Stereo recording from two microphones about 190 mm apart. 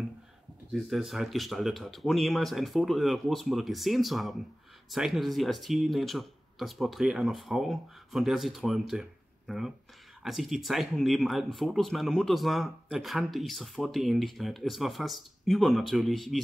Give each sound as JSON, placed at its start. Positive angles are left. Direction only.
{"t": 0.7, "sound": "speech", "side_deg": 0}